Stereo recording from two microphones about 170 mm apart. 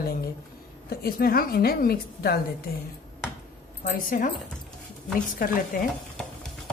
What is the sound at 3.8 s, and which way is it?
Speech, 55° left (ahead or behind).